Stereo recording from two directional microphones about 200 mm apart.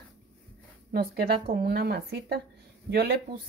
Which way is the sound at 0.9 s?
50° right (ahead or behind).